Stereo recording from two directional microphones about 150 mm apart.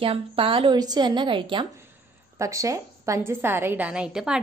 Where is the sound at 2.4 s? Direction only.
20° right (ahead or behind).